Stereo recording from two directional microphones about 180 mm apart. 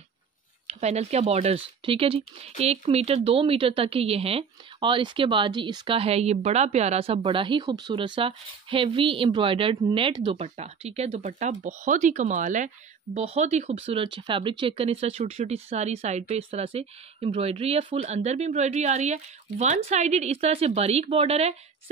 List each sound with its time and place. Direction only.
0.7 s speech: 35° right (ahead or behind)